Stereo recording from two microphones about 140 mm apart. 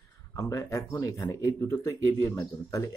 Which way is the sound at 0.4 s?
20° left (ahead or behind).